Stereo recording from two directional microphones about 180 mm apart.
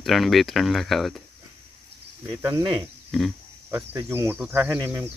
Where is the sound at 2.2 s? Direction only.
15° right (ahead or behind).